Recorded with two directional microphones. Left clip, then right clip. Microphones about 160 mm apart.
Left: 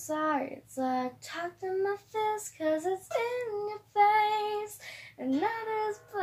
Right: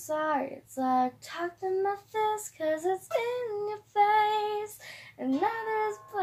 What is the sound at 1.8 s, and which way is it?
Child singing, 35° right (ahead or behind).